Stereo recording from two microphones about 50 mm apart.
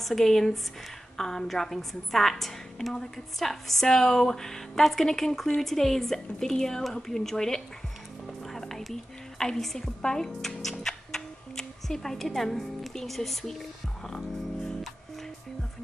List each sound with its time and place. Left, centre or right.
0.0 s a woman's voice: centre